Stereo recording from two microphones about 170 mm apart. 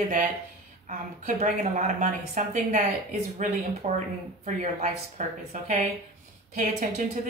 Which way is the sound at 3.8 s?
40° right (ahead or behind).